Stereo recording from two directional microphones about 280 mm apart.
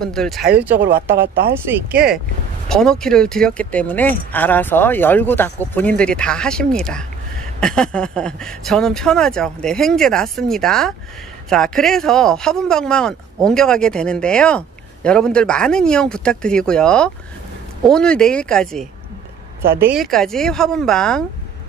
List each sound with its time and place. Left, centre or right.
0.0 s speech: centre
0.7 s speech: right
1.7 s speech: centre